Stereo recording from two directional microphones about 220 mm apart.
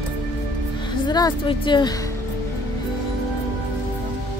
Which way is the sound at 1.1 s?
20° left (ahead or behind).